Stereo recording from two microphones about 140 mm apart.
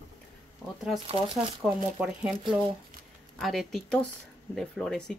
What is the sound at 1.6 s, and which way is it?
Speech, 10° right (ahead or behind).